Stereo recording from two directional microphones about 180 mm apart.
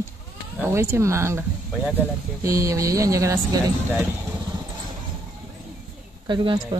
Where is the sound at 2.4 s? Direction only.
15° right (ahead or behind).